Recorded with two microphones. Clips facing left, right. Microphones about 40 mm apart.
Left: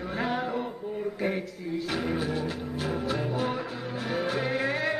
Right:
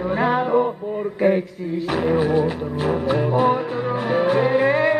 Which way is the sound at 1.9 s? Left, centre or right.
Right.